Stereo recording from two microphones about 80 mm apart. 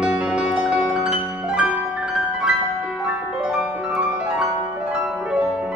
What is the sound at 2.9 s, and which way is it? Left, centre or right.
Music, centre.